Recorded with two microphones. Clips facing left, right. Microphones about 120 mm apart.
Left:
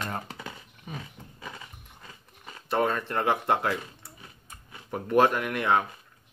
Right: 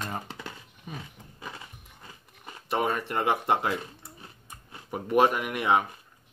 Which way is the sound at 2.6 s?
15° right (ahead or behind).